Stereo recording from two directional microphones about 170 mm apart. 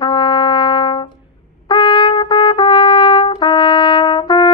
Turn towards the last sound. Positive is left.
turn(degrees=25)  # may be behind; listen again after turning